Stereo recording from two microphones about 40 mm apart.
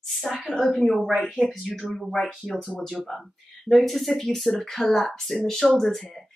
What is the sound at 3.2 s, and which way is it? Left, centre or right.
Speech, centre.